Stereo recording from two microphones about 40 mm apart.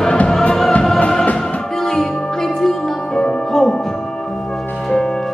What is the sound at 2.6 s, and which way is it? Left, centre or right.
Music, centre.